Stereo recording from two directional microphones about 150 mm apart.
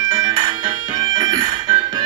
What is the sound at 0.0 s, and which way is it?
Music, 30° right (ahead or behind).